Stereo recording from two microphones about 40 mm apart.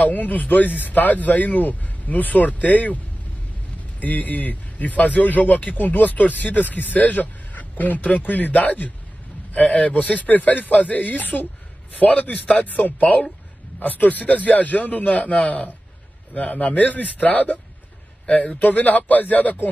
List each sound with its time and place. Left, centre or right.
0.0 s speech: left
4.0 s a man's voice: left
12.1 s a man's voice: left